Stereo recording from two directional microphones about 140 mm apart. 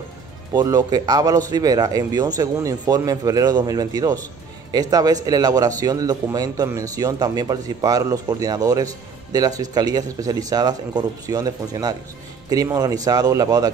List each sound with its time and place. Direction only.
0.5 s a man's voice: 25° right (ahead or behind)